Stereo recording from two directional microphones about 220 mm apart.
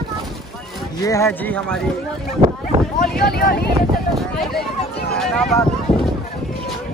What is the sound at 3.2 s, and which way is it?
Speech, 45° left (ahead or behind).